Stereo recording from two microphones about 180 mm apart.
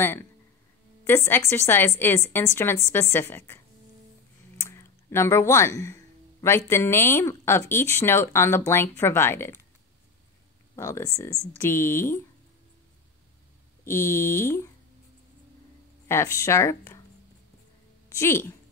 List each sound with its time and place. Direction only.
1.0 s a woman's voice: 15° left (ahead or behind)
10.8 s a woman's voice: 15° left (ahead or behind)
13.8 s a woman's voice: 15° left (ahead or behind)
16.1 s a woman's voice: 15° left (ahead or behind)
18.1 s a woman's voice: 15° left (ahead or behind)